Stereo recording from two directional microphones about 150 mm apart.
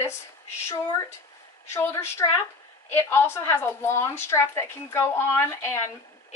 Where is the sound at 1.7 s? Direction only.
15° left (ahead or behind).